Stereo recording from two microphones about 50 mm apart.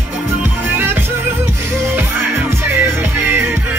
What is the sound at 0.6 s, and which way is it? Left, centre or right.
Music, right.